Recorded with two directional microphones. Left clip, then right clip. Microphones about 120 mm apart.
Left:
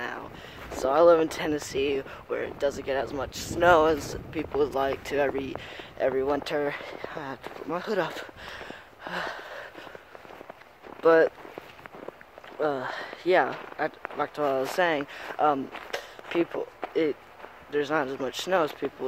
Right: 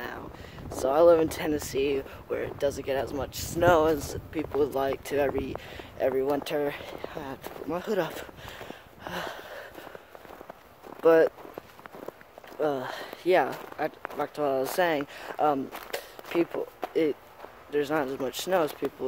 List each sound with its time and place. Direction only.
0.7 s speech: 15° right (ahead or behind)
7.7 s a sound: 25° right (ahead or behind)
11.0 s speech: 20° right (ahead or behind)
12.5 s speech: 15° right (ahead or behind)
16.8 s a sound: 15° right (ahead or behind)
17.6 s speech: 20° right (ahead or behind)